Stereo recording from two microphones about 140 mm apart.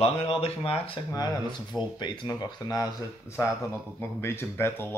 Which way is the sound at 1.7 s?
30° left (ahead or behind).